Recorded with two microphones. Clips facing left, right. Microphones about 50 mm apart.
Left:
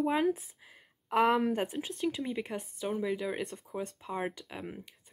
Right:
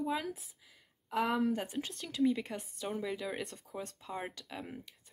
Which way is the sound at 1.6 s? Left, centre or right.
Centre.